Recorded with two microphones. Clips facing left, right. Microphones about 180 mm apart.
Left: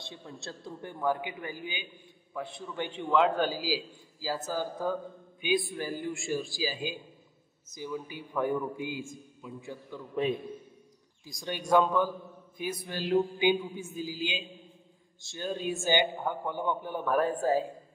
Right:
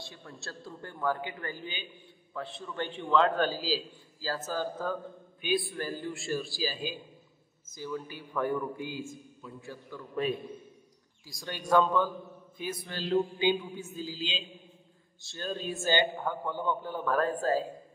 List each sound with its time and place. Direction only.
0.0 s a man's voice: 20° left (ahead or behind)